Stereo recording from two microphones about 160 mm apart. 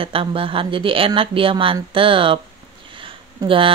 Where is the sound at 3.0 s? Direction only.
35° right (ahead or behind).